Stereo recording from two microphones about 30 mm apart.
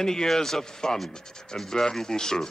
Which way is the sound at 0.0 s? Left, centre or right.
Centre.